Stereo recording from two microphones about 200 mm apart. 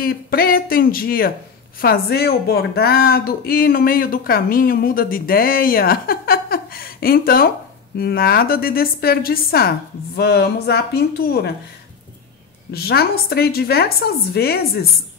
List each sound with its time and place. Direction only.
0.0 s speech: 50° left (ahead or behind)
12.7 s speech: 50° left (ahead or behind)